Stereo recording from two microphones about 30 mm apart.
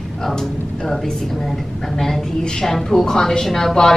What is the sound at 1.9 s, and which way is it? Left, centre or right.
A woman's voice, centre.